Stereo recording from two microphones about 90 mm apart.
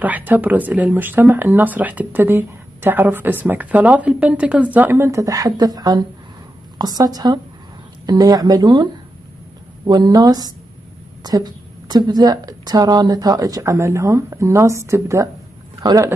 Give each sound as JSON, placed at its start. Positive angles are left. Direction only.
{"t": 0.0, "sound": "speech", "side_deg": -20}
{"t": 9.8, "sound": "a woman's voice", "side_deg": -50}